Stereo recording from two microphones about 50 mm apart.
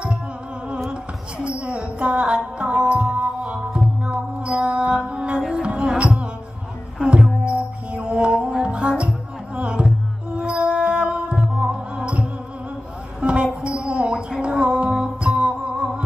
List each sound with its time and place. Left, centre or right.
1.4 s music: right
3.5 s music: centre
4.0 s music: right